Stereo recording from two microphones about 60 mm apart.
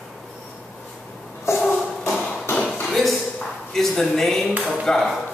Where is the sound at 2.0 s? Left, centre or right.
Centre.